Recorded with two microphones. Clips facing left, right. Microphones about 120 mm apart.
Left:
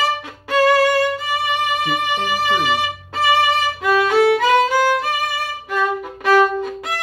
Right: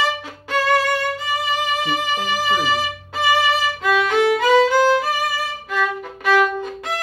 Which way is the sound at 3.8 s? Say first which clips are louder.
Left 3 dB; 5° left (ahead or behind).